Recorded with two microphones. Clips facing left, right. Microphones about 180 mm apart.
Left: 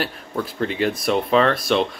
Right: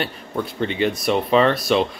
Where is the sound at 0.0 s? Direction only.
Centre (ahead or behind).